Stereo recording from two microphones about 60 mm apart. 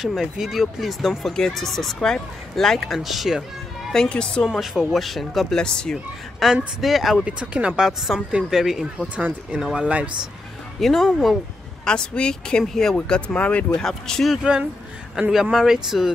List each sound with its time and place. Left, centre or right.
0.0 s speech: centre
3.9 s speech: centre
4.5 s speech: centre
6.4 s speech: centre
7.2 s speech: centre
8.5 s speech: centre
9.1 s speech: right
9.6 s speech: centre
9.8 s speech: right
10.8 s speech: centre
11.8 s speech: centre
13.7 s speech: centre
14.3 s speech: centre